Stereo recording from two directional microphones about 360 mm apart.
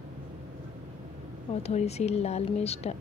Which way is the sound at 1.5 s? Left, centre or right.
Centre.